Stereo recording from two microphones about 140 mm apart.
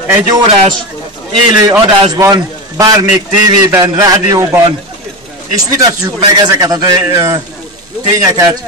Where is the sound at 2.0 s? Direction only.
25° right (ahead or behind).